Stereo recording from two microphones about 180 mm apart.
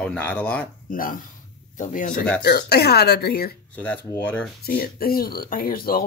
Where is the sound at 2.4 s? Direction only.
60° left (ahead or behind).